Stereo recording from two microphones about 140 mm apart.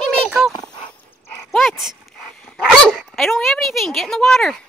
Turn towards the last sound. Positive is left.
turn(degrees=5)  # may be behind; listen again after turning